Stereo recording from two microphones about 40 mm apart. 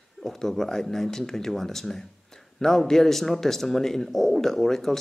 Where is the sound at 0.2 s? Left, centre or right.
Centre.